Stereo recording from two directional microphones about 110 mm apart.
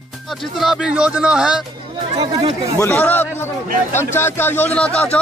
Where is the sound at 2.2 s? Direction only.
35° right (ahead or behind).